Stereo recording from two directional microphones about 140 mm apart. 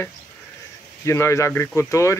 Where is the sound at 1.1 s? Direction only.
20° left (ahead or behind).